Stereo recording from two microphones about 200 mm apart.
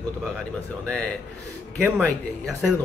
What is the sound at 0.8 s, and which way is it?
A man's voice, 5° left (ahead or behind).